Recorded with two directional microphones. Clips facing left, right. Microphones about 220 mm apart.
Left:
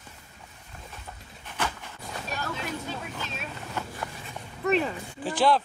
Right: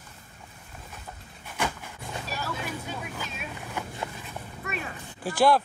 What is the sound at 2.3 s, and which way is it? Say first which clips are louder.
Boat: left 1 dB; 5° right (ahead or behind).